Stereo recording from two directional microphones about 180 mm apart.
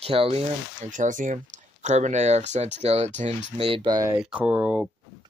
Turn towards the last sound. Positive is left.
turn(degrees=-10)  # may be behind; listen again after turning